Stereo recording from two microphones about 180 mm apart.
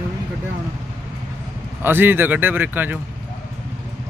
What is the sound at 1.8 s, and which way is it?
Speech, 10° right (ahead or behind).